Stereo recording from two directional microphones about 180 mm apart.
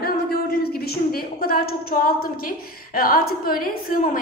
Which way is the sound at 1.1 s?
55° left (ahead or behind).